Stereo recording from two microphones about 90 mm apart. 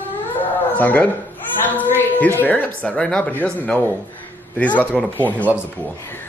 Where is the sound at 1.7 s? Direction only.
20° left (ahead or behind).